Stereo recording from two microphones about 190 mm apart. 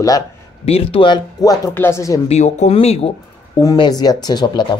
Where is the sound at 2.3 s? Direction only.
35° left (ahead or behind).